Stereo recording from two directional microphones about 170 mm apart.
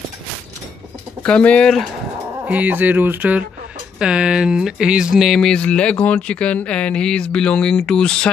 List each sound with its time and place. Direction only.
1.2 s speech: 5° left (ahead or behind)
2.4 s speech: 10° right (ahead or behind)